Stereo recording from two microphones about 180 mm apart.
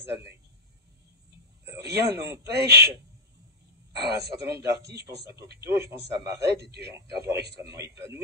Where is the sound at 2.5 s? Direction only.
65° right (ahead or behind).